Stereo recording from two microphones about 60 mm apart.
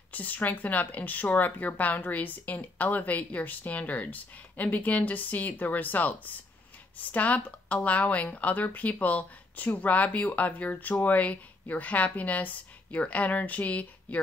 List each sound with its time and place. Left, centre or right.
0.1 s speech: left